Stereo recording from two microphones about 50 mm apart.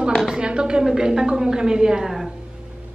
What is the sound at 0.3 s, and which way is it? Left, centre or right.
A woman's voice, centre.